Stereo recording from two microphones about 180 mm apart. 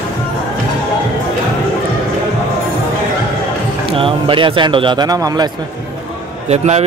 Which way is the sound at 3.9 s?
30° right (ahead or behind).